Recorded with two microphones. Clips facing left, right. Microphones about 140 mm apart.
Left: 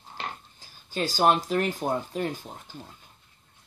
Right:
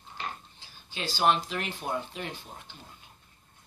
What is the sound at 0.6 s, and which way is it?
Speech, 45° left (ahead or behind).